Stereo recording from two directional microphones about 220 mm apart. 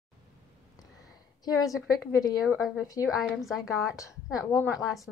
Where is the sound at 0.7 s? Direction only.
15° left (ahead or behind).